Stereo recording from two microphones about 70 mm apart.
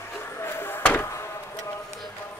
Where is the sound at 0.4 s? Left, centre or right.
Left.